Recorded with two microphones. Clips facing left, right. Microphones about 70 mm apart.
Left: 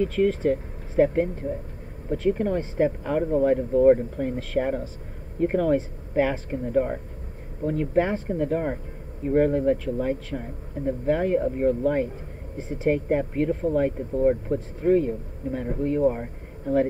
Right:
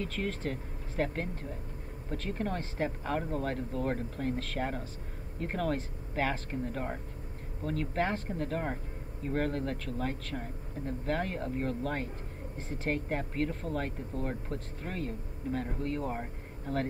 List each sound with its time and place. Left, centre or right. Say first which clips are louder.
0.0 s speech: left 13 dB; centre